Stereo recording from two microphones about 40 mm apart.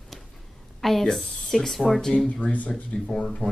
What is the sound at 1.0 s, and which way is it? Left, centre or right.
Speech, centre.